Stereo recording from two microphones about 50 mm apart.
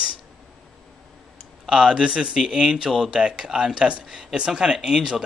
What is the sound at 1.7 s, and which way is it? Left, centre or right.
Speech, centre.